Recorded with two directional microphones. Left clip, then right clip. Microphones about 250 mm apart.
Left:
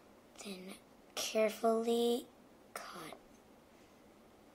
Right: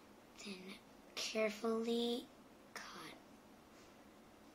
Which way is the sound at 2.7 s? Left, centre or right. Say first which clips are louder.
Left 4 dB; left.